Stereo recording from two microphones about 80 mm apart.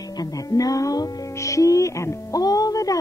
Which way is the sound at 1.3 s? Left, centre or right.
Left.